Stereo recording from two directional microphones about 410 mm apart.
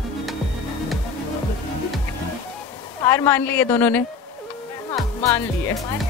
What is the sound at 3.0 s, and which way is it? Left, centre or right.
A woman's voice, centre.